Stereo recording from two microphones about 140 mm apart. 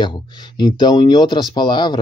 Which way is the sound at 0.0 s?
35° left (ahead or behind).